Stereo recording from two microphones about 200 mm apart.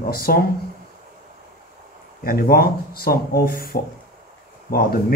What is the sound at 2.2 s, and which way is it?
Speech, 50° left (ahead or behind).